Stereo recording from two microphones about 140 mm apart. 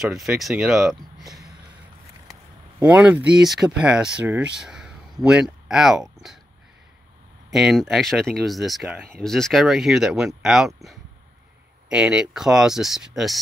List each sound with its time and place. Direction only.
0.0 s speech: centre (ahead or behind)
2.8 s speech: 10° right (ahead or behind)
7.5 s speech: centre (ahead or behind)
11.9 s speech: 5° right (ahead or behind)